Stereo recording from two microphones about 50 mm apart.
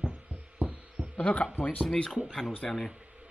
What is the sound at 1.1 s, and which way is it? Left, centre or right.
Speech, left.